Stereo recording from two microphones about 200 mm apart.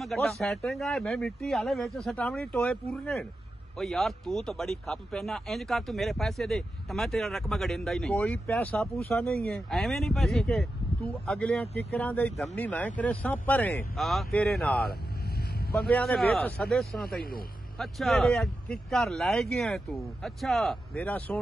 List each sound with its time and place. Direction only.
0.0 s speech: centre (ahead or behind)
14.9 s vehicle: 50° left (ahead or behind)
15.8 s speech: 5° left (ahead or behind)